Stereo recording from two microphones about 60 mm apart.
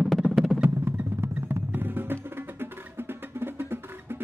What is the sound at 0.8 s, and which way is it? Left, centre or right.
Music, right.